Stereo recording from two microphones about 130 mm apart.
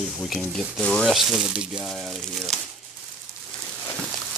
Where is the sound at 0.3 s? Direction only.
5° left (ahead or behind).